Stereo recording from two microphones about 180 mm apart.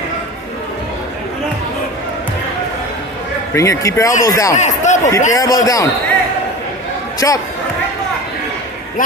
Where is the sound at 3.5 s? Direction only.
15° left (ahead or behind).